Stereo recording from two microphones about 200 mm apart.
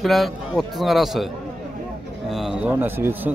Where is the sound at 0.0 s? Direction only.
Centre (ahead or behind).